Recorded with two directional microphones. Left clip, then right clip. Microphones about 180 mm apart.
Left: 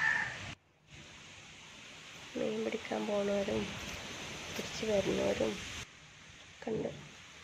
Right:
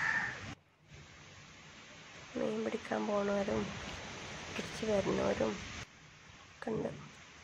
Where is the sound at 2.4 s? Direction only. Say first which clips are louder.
Left 1 dB; 10° left (ahead or behind).